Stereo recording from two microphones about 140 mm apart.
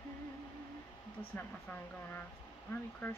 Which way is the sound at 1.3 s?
15° left (ahead or behind).